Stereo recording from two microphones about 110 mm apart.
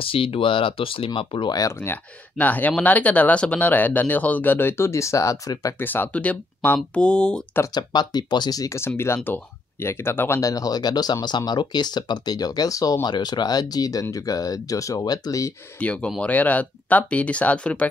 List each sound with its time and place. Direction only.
0.0 s speech: 55° left (ahead or behind)
1.6 s speech: 20° left (ahead or behind)
5.8 s speech: 20° left (ahead or behind)
7.7 s speech: 40° left (ahead or behind)
15.8 s speech: 10° left (ahead or behind)